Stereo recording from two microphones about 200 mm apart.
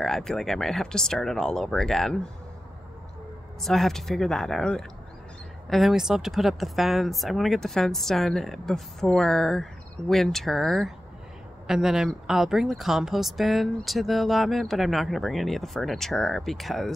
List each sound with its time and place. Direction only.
0.0 s speech: centre (ahead or behind)
3.6 s speech: centre (ahead or behind)